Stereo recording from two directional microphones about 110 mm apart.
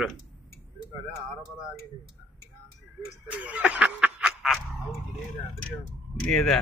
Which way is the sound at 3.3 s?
10° right (ahead or behind).